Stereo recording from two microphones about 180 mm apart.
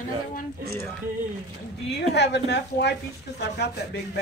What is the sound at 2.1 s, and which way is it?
A woman's voice, 70° left (ahead or behind).